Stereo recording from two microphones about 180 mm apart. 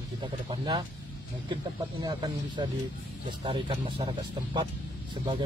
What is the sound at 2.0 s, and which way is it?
Speech, 25° right (ahead or behind).